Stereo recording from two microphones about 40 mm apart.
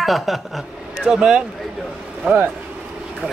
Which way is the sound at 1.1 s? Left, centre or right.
Right.